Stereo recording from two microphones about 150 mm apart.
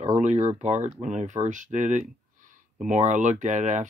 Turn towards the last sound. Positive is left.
turn(degrees=-55)  # may be behind; listen again after turning